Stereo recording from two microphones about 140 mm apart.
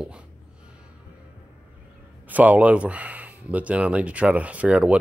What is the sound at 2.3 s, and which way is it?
Speech, 10° right (ahead or behind).